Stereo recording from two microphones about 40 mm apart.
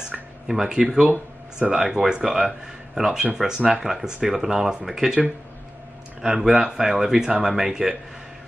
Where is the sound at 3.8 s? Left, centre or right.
Centre.